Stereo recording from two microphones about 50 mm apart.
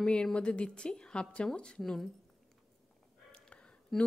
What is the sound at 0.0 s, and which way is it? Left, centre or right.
Speech, centre.